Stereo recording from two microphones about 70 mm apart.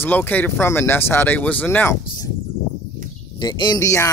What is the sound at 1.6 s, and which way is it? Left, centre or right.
Speech, left.